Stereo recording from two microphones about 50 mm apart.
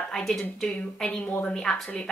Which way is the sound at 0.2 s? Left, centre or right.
Centre.